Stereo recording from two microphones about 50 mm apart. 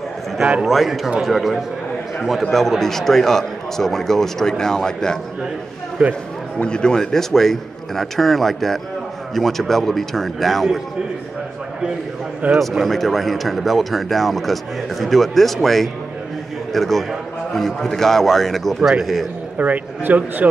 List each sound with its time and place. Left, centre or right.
0.7 s a man's voice: centre
6.0 s speech: right
6.6 s a man's voice: centre
12.5 s speech: centre
19.6 s a man's voice: right